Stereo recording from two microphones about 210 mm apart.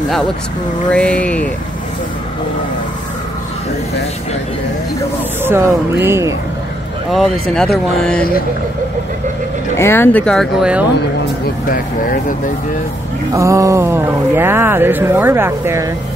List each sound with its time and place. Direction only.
0.9 s speech: 5° left (ahead or behind)
5.4 s speech: 10° right (ahead or behind)
7.1 s speech: centre (ahead or behind)
9.8 s speech: 10° left (ahead or behind); by 10.9 s 5° right (ahead or behind)
11.7 s speech: 40° left (ahead or behind)
13.3 s speech: 15° right (ahead or behind)